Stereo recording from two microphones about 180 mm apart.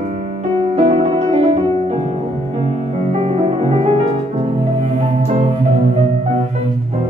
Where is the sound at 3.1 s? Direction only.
35° right (ahead or behind).